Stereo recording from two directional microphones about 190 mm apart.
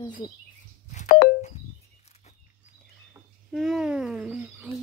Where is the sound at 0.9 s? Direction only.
50° left (ahead or behind).